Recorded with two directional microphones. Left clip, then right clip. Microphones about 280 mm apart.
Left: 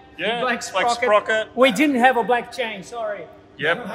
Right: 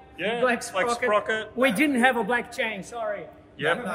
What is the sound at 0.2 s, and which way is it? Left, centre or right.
A man's voice, centre.